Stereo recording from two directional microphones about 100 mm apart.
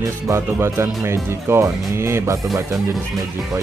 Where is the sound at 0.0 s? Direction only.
30° right (ahead or behind).